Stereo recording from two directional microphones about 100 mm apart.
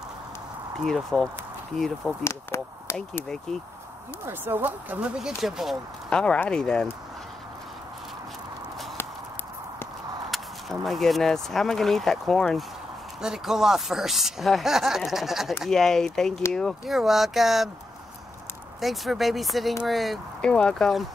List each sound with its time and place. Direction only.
0.8 s speech: 5° left (ahead or behind)
2.2 s speech: 25° left (ahead or behind)
4.3 s speech: 20° right (ahead or behind); by 5.8 s 5° right (ahead or behind)
6.0 s speech: 10° left (ahead or behind)
10.3 s speech: centre (ahead or behind)
18.8 s speech: centre (ahead or behind)